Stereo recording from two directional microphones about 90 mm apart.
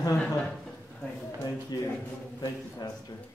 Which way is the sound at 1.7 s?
50° left (ahead or behind).